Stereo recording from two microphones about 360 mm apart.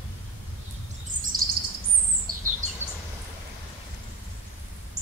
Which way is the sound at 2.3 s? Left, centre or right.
Right.